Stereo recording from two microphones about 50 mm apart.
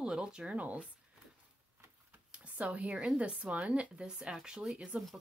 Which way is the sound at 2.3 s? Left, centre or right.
Right.